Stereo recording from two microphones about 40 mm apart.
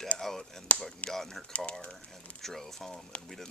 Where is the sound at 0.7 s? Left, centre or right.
Left.